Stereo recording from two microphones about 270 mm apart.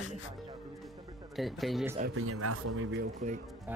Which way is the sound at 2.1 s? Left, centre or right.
Right.